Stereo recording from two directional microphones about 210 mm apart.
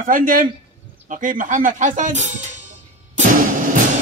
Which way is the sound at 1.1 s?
40° right (ahead or behind).